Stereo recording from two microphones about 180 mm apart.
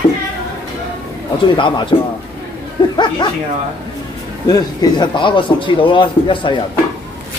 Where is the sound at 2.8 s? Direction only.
25° left (ahead or behind).